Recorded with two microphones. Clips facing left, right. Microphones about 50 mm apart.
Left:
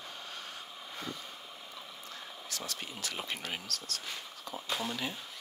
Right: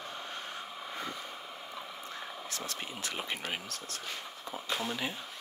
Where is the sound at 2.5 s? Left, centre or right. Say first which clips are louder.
Even; right.